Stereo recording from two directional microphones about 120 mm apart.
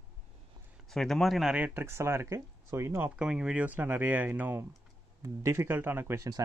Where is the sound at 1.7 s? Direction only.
20° right (ahead or behind).